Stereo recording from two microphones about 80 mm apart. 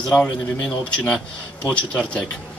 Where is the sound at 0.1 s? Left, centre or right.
Left.